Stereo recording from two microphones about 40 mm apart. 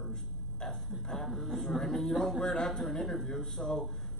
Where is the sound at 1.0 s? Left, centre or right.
Centre.